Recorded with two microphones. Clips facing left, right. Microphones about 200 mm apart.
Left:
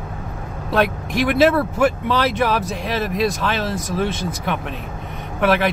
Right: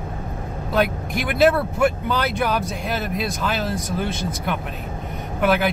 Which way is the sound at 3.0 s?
Centre (ahead or behind).